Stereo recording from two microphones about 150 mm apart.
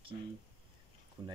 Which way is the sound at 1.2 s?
30° right (ahead or behind).